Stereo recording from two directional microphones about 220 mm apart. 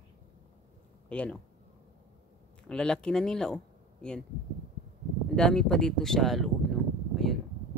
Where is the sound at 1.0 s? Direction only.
5° left (ahead or behind).